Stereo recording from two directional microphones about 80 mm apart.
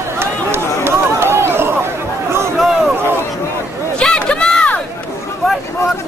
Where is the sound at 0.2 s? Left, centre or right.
Right.